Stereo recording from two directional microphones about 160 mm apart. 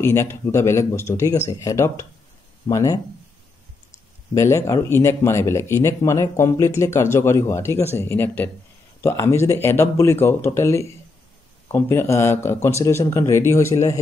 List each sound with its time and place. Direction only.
0.0 s speech: 15° left (ahead or behind)